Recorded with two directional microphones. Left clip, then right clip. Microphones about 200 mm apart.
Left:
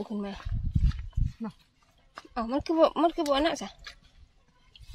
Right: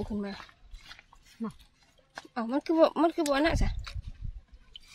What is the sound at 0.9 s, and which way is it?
Dog, 50° right (ahead or behind).